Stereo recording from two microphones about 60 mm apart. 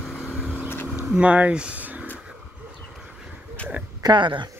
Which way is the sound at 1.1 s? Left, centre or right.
Right.